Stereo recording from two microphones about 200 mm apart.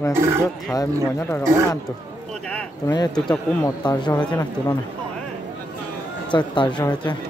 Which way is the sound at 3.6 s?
20° left (ahead or behind).